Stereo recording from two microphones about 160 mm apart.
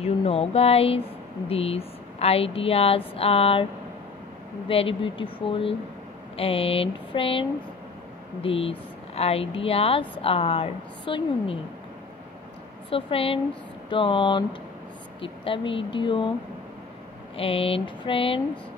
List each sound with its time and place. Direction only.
0.0 s a woman's voice: 40° left (ahead or behind)
4.6 s a woman's voice: 35° left (ahead or behind)
12.9 s a woman's voice: 35° left (ahead or behind)
17.4 s a woman's voice: 35° left (ahead or behind)